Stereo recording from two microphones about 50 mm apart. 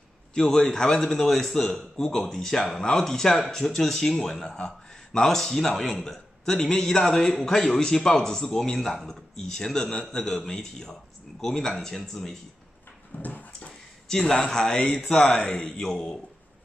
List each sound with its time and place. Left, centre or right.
0.3 s a man's voice: centre
13.1 s dog: left
14.0 s a man's voice: centre